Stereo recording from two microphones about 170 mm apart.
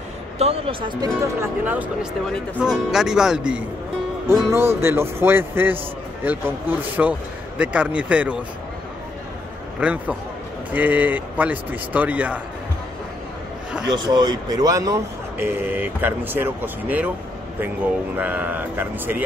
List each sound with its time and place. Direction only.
0.4 s a man's voice: 35° right (ahead or behind)
1.2 s speech: 10° right (ahead or behind)
9.8 s speech: 5° right (ahead or behind)
13.8 s speech: 25° right (ahead or behind); by 17.1 s 10° right (ahead or behind)
18.1 s speech: 10° right (ahead or behind)